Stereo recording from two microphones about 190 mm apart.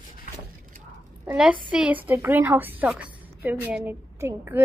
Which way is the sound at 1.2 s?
5° right (ahead or behind).